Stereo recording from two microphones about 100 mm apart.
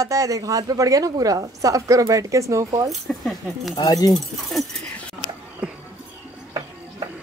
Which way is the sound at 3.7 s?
40° left (ahead or behind).